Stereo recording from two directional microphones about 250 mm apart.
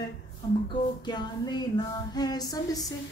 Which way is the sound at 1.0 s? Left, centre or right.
Centre.